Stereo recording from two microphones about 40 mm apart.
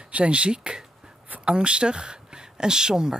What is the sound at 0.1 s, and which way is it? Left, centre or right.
Speech, right.